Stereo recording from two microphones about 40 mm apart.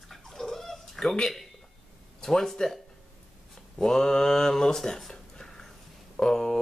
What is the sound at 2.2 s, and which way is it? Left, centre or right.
Speech, centre.